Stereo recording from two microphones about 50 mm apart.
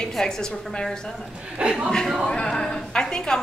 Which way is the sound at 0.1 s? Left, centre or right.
Centre.